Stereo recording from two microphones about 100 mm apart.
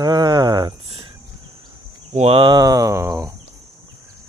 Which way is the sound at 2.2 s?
80° right.